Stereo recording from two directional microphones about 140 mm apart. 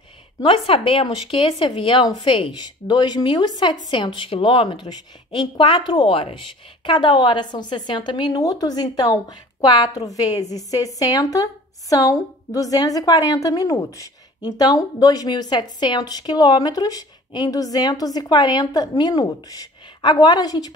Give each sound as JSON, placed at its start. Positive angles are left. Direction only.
{"t": 0.4, "sound": "a woman's voice", "side_deg": 40}